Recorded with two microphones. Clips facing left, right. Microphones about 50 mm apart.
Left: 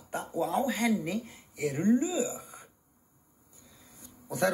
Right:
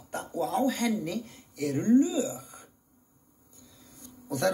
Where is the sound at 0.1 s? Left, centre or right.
Centre.